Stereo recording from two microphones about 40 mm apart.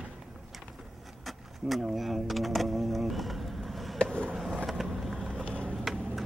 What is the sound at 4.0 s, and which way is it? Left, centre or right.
Skateboard, left.